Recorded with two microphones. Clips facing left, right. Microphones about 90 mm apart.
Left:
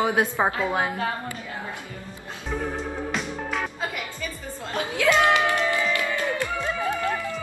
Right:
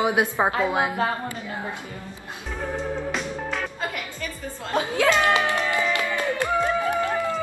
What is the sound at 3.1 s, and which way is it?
Music, centre (ahead or behind).